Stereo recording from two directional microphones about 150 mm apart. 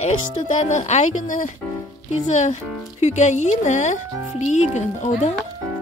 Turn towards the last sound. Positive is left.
turn(degrees=50)  # may be behind; listen again after turning